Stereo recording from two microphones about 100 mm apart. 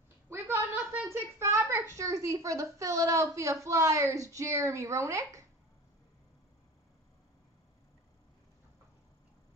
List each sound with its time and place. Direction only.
0.3 s a woman's voice: 25° right (ahead or behind)